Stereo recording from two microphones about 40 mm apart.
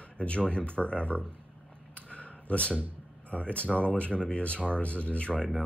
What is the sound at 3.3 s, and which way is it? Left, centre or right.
Speech, left.